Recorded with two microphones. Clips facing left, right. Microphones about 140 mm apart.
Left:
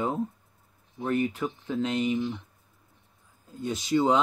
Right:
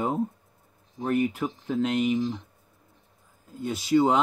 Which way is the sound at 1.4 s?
35° right (ahead or behind).